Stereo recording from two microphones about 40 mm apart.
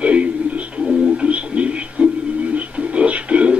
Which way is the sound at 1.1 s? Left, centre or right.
Right.